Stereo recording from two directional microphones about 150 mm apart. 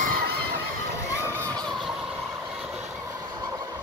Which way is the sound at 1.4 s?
5° left (ahead or behind).